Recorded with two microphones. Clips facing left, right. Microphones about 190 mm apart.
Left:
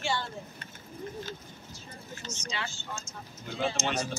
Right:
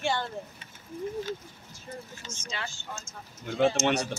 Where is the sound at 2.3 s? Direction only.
50° right (ahead or behind).